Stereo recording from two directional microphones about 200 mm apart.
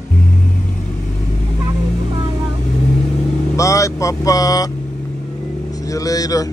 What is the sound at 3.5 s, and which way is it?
Speech, 15° left (ahead or behind).